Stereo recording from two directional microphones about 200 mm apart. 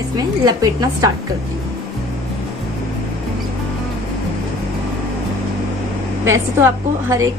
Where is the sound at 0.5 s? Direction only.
20° right (ahead or behind).